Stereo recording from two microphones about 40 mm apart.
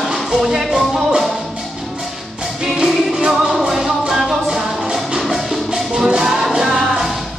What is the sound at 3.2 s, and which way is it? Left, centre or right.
Music, centre.